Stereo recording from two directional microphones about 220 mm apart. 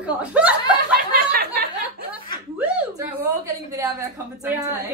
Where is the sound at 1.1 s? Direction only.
45° right (ahead or behind).